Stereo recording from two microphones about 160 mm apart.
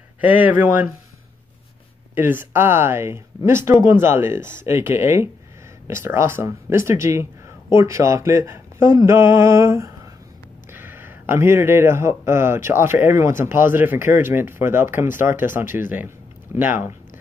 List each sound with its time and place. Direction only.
0.2 s speech: 10° right (ahead or behind)
2.1 s speech: 15° right (ahead or behind)
16.5 s speech: 10° right (ahead or behind)